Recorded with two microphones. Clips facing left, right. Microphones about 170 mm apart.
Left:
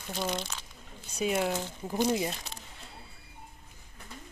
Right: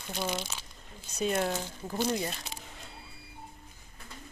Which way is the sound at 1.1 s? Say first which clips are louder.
Left 1 dB; 10° left (ahead or behind).